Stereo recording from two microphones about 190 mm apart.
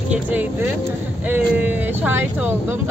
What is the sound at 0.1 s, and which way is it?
Speech, 10° right (ahead or behind).